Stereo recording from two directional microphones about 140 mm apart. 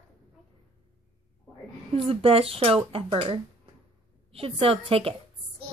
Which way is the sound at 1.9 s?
45° right (ahead or behind).